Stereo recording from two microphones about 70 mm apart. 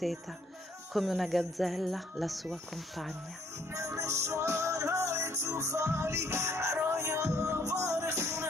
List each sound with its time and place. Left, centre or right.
0.9 s speech: centre
3.7 s music: right